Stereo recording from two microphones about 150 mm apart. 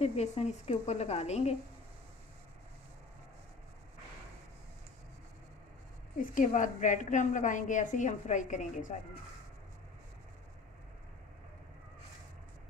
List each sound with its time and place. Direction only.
0.0 s a woman's voice: 45° left (ahead or behind)
6.1 s a woman's voice: 60° left (ahead or behind)